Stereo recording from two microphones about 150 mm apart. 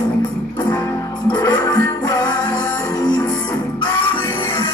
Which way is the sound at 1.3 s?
30° left (ahead or behind).